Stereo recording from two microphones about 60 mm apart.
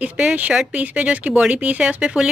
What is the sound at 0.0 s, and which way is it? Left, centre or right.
Speech, centre.